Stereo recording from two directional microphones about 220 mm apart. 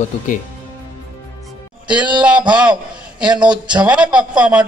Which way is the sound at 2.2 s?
5° right (ahead or behind).